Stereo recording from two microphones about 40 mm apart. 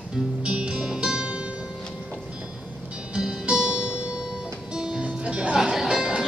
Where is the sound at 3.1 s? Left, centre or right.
Right.